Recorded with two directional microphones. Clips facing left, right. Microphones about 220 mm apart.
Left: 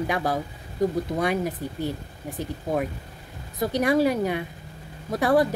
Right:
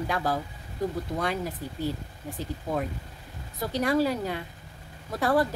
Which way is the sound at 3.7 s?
15° left (ahead or behind).